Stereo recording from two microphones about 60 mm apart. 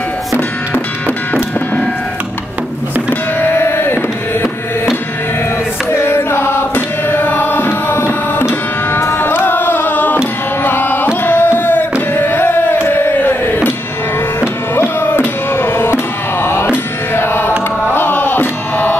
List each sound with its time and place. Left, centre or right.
1.0 s music: left
3.1 s music: left
5.9 s music: left
13.2 s a sound: left
14.8 s music: left